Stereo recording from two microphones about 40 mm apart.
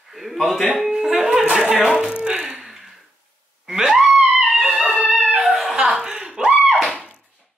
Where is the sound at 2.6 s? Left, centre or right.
Centre.